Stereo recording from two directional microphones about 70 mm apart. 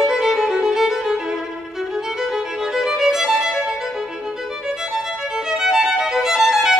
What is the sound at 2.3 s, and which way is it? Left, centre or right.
Violin, centre.